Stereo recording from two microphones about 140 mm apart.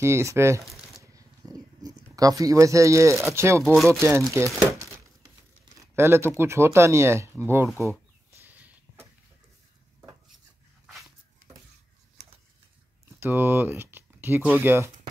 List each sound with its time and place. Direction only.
0.0 s speech: 20° right (ahead or behind)
1.1 s a sound: 25° right (ahead or behind)
3.6 s speech: centre (ahead or behind)
4.3 s speech: 20° right (ahead or behind)
5.9 s speech: 15° right (ahead or behind)
8.3 s a sound: 15° right (ahead or behind)
13.2 s speech: 15° right (ahead or behind)